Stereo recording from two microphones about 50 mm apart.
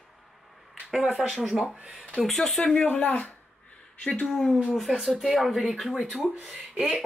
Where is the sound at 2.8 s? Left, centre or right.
Left.